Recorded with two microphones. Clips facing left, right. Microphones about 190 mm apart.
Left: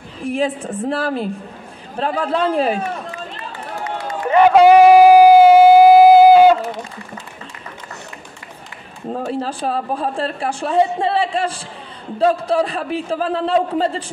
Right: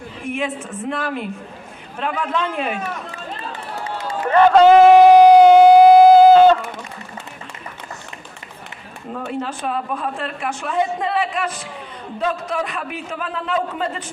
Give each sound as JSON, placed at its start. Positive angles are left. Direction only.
{"t": 0.2, "sound": "a man's voice", "side_deg": 35}
{"t": 3.8, "sound": "run", "side_deg": -30}
{"t": 4.3, "sound": "a sound", "side_deg": 10}
{"t": 9.1, "sound": "a man's voice", "side_deg": 35}